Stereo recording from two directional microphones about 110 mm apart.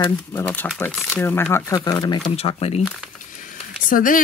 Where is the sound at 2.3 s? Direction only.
70° left (ahead or behind).